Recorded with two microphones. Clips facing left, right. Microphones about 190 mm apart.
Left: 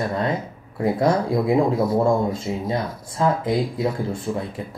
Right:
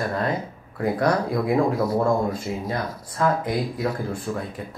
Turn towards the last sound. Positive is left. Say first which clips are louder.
# left 2 dB
turn(degrees=25)  # may be behind; listen again after turning